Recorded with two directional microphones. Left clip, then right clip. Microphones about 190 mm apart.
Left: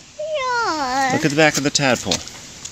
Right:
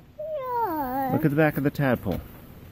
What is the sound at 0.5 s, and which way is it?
Babbling, 10° right (ahead or behind).